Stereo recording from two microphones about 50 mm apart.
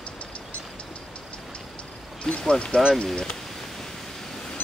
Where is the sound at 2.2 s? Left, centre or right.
Centre.